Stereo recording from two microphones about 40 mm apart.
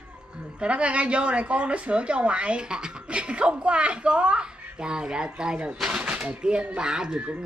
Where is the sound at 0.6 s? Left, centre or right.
Right.